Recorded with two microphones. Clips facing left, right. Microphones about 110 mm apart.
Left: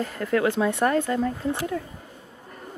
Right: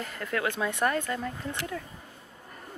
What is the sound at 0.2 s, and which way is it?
Speech, 15° left (ahead or behind).